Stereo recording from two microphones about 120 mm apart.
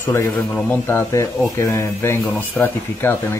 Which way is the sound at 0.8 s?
20° left (ahead or behind).